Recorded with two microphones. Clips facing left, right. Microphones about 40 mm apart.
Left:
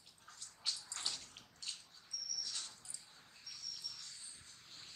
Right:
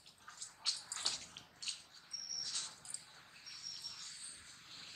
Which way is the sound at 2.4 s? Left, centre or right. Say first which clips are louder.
Right 3 dB; right.